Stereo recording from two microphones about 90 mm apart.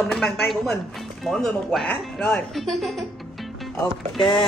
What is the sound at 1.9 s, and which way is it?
Speech, 15° left (ahead or behind).